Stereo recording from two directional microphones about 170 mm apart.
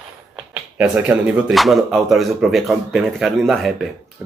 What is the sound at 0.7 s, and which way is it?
Speech, 5° right (ahead or behind).